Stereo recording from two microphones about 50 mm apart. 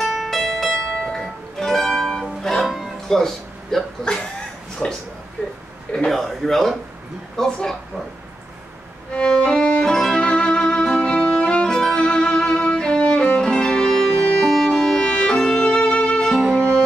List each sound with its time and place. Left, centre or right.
0.0 s music: centre
2.6 s music: centre
3.1 s speech: centre
6.0 s speech: centre
9.1 s music: left
15.3 s violin: centre; by 16.2 s left
16.3 s music: centre
16.5 s music: centre